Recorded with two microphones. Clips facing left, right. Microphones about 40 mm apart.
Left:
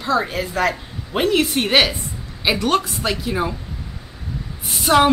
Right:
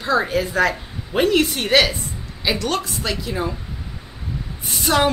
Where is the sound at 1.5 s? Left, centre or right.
Centre.